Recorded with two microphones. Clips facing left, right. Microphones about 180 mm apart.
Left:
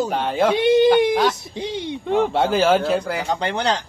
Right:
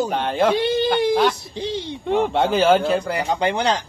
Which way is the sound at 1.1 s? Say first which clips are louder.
Right 1 dB; 5° left (ahead or behind).